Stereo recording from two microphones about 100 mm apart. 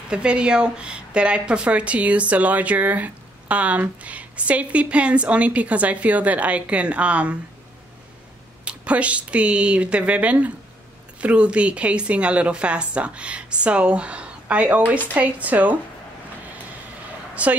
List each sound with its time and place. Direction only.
0.1 s a woman's voice: 10° right (ahead or behind)
8.6 s a woman's voice: 15° right (ahead or behind)
17.4 s a woman's voice: 15° right (ahead or behind)